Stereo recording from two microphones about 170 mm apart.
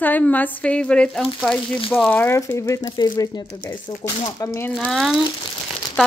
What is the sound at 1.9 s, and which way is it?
Speech, 10° left (ahead or behind).